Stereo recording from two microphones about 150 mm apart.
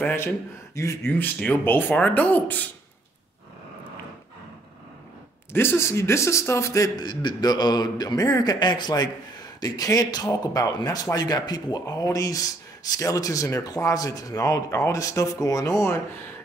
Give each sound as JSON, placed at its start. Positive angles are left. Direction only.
{"t": 0.0, "sound": "speech", "side_deg": 15}
{"t": 5.5, "sound": "a man's voice", "side_deg": 15}